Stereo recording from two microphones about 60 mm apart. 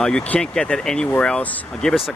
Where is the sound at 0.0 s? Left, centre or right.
Centre.